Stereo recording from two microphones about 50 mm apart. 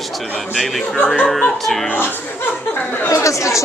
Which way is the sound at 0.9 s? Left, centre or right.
Left.